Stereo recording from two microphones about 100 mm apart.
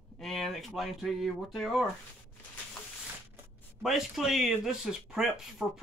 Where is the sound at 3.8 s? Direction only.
5° right (ahead or behind).